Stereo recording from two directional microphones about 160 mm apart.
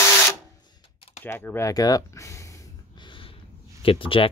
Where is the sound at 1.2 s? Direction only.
15° left (ahead or behind).